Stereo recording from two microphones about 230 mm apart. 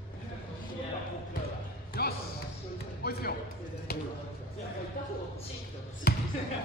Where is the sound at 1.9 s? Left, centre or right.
Left.